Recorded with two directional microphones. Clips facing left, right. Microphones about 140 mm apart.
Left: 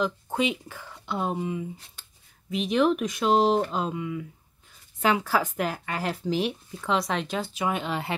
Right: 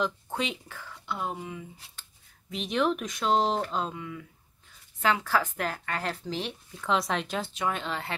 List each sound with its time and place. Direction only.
0.0 s speech: 5° left (ahead or behind)
0.7 s speech: 25° left (ahead or behind)
2.5 s speech: 5° left (ahead or behind)